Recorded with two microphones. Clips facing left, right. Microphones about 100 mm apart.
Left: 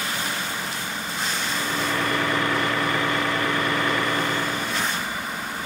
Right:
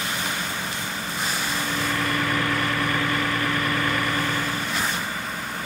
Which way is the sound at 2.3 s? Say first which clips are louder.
Left 1 dB; 25° left (ahead or behind).